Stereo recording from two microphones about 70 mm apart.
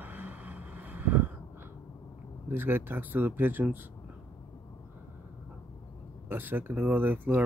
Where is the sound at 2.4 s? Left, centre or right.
Right.